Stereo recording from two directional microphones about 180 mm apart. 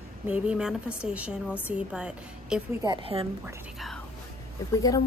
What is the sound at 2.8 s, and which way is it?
Speech, 25° right (ahead or behind).